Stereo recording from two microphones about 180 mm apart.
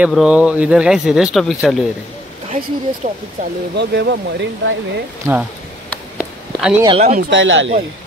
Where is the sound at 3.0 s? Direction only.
40° right (ahead or behind).